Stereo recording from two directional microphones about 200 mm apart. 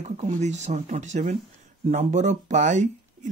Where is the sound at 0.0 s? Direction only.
35° right (ahead or behind).